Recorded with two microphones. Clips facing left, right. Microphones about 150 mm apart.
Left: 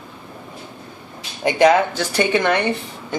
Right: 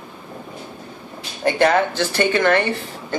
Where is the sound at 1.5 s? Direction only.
15° left (ahead or behind).